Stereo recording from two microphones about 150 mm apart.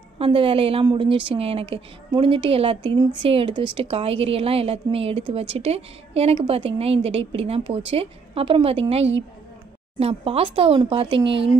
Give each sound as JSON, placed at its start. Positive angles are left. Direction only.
{"t": 0.2, "sound": "a woman's voice", "side_deg": -40}